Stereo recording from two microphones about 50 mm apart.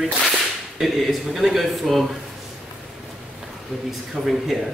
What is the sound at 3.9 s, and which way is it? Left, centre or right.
Speech, centre.